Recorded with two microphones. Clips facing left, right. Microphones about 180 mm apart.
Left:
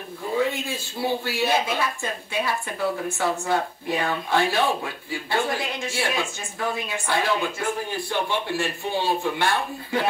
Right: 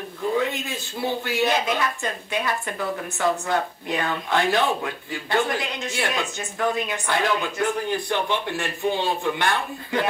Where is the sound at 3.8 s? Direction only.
20° right (ahead or behind).